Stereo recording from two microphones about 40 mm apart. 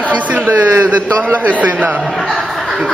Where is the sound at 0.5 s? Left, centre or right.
Right.